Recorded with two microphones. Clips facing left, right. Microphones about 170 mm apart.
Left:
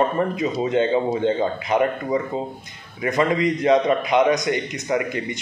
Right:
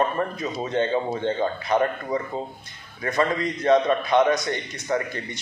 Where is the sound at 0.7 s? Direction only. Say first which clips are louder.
Left 3 dB; 15° left (ahead or behind).